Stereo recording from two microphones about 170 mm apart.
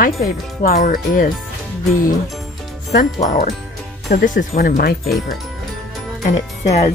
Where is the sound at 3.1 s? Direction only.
50° left (ahead or behind).